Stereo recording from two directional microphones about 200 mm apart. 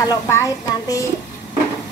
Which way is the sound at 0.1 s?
15° left (ahead or behind).